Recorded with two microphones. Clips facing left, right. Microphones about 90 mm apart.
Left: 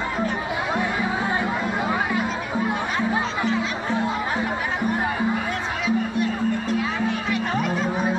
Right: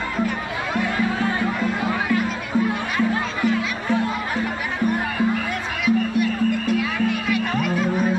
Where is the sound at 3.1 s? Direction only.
20° left (ahead or behind).